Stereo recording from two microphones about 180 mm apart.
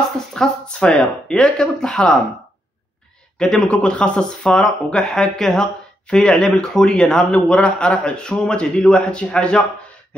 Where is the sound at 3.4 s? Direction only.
5° left (ahead or behind).